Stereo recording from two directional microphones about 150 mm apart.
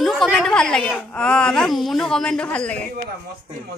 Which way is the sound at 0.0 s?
Centre (ahead or behind).